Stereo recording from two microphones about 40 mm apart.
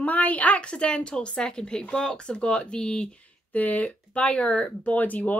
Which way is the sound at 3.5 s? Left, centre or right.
Left.